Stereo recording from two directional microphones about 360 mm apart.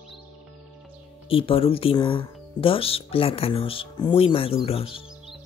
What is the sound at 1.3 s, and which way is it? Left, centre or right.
Speech, centre.